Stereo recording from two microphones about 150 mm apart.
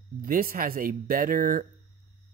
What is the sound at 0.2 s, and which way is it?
Speech, 75° right (ahead or behind).